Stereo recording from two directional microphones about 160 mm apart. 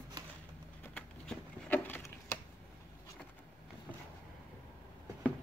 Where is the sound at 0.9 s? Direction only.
10° left (ahead or behind).